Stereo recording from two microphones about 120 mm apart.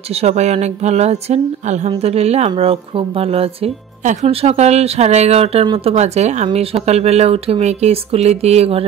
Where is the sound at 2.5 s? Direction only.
50° right (ahead or behind).